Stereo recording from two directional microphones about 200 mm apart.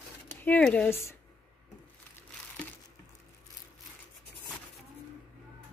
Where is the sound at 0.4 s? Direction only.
10° left (ahead or behind).